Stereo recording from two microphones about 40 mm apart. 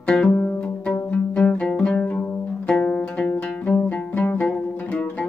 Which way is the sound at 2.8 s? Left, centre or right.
Left.